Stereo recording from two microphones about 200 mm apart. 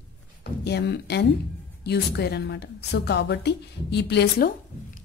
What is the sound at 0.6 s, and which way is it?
A woman's voice, 55° left (ahead or behind).